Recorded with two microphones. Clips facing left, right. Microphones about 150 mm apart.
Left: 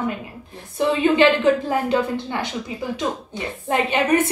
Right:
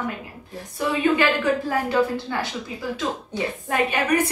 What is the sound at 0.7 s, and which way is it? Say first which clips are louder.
A woman's voice: left 4 dB; 25° left (ahead or behind).